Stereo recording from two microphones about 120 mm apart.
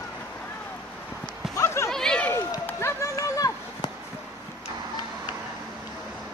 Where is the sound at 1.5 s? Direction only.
25° left (ahead or behind).